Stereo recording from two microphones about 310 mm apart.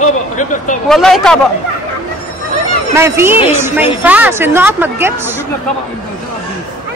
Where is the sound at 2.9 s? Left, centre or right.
Centre.